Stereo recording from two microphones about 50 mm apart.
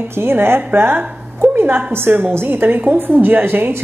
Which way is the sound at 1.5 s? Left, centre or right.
Right.